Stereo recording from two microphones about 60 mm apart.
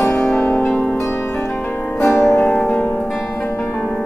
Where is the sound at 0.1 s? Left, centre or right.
Centre.